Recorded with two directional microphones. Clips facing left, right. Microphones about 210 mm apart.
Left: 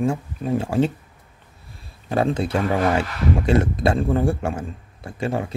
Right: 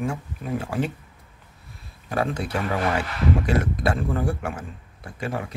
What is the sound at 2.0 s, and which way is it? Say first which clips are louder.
Speech: left 5 dB; 25° left (ahead or behind).